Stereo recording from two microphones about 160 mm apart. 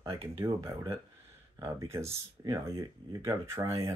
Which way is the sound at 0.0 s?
20° right (ahead or behind).